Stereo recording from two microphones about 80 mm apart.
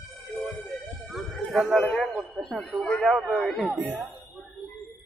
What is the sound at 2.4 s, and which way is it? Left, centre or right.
Speech, centre.